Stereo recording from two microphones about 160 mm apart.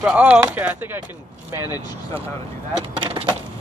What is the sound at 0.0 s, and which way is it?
Speech, 5° right (ahead or behind).